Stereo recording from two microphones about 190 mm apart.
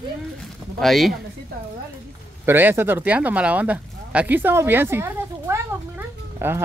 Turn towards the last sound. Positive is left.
turn(degrees=-10)  # may be behind; listen again after turning